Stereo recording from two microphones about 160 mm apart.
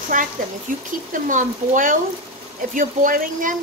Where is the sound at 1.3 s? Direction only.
55° right (ahead or behind).